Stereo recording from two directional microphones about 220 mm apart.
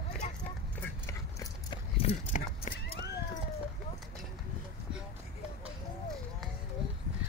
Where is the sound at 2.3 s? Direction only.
35° left (ahead or behind).